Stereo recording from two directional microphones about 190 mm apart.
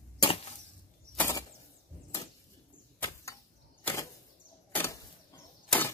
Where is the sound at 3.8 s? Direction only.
15° left (ahead or behind).